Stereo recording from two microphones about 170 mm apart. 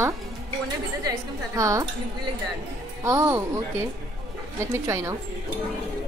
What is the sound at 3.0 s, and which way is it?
Speech, 20° right (ahead or behind).